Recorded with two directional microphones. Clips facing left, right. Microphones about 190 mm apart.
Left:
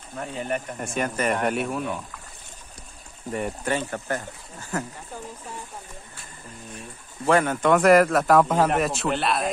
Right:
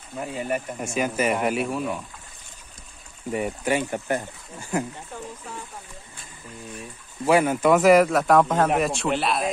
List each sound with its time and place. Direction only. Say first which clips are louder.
0.2 s speech: right 1 dB; 5° right (ahead or behind)
3.3 s speech: right 2 dB; 5° right (ahead or behind)
7.2 s speech: right 1 dB; 10° right (ahead or behind)